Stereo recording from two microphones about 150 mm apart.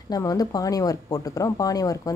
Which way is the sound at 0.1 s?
25° left (ahead or behind).